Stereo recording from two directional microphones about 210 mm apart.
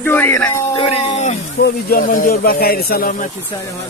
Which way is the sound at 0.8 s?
25° left (ahead or behind).